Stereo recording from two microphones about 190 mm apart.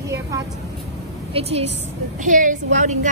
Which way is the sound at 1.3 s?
30° right (ahead or behind).